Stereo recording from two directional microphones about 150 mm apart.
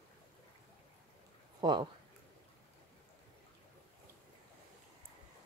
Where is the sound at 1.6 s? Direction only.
30° right (ahead or behind).